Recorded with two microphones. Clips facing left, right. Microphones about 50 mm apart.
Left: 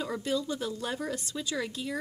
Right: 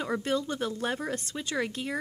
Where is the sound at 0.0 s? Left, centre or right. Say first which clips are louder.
Right 2 dB; right.